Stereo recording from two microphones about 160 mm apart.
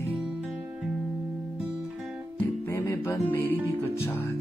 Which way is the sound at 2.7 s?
15° left (ahead or behind).